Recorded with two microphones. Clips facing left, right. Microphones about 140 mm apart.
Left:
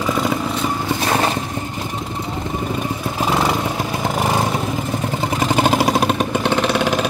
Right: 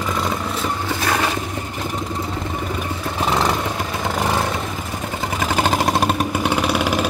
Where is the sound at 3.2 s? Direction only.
10° left (ahead or behind).